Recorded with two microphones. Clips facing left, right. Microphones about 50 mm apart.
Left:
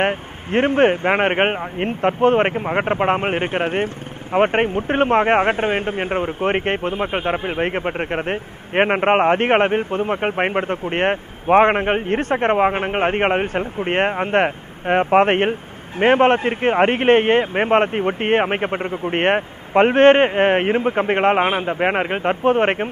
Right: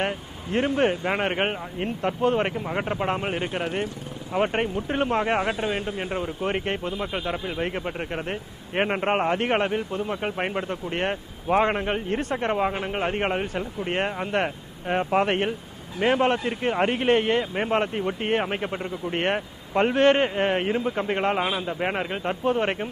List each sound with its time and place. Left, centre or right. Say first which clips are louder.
0.0 s speech: left 7 dB; left